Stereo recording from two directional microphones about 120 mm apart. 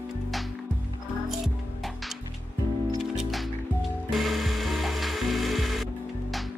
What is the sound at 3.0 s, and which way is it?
Music, centre (ahead or behind).